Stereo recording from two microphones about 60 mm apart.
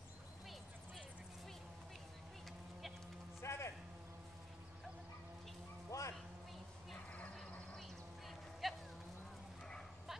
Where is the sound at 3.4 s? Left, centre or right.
Left.